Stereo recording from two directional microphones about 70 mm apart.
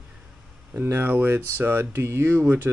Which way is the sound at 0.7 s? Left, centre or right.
Right.